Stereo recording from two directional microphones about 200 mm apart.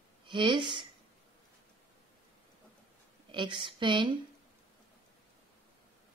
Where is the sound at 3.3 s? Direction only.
25° right (ahead or behind).